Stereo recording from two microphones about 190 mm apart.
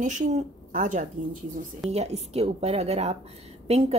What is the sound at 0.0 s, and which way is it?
Speech, 40° right (ahead or behind).